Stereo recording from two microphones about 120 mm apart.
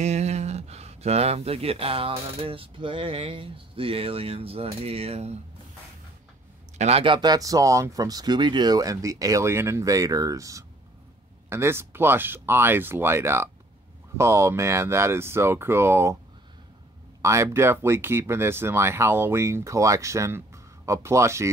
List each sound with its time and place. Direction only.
0.0 s speech: 70° right (ahead or behind)
6.8 s speech: 60° right (ahead or behind)
7.1 s speech: 35° right (ahead or behind)
17.2 s speech: 25° right (ahead or behind)